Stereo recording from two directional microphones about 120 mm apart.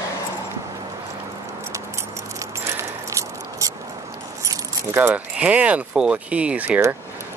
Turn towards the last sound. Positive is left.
turn(degrees=-10)  # may be behind; listen again after turning